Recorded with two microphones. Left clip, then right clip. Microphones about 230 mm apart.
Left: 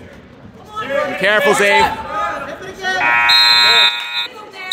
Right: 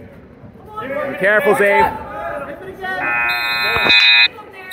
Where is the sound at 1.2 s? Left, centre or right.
Centre.